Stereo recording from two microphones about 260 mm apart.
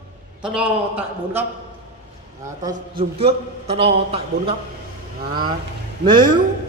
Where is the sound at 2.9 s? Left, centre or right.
Right.